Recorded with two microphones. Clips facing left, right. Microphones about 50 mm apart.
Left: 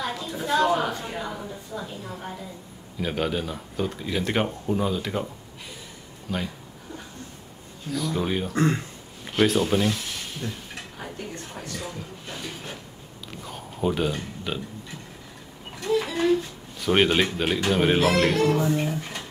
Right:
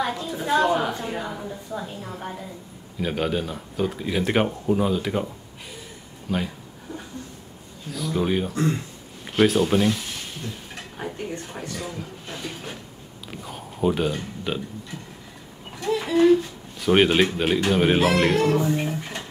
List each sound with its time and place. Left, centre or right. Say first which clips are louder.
0.2 s a woman's voice: even; centre
3.0 s speech: right 2 dB; centre
7.9 s speech: right 2 dB; centre
8.5 s speech: left 1 dB; left
9.2 s speech: right 2 dB; centre
11.0 s speech: right 6 dB; centre
11.8 s a sound: right 2 dB; centre
13.3 s speech: right 2 dB; centre
15.9 s a sound: right 5 dB; centre
16.8 s speech: right 3 dB; centre